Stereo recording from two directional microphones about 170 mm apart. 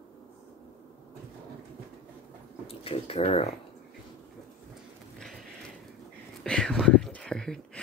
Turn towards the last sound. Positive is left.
turn(degrees=5)  # may be behind; listen again after turning